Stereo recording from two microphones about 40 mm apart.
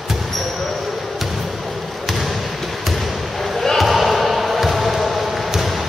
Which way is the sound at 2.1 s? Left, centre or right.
Centre.